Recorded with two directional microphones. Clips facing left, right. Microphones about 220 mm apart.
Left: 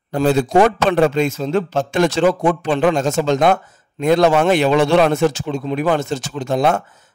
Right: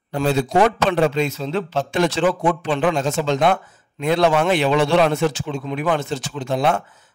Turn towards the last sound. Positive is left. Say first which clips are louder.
# left 3 dB
turn(degrees=45)  # may be behind; listen again after turning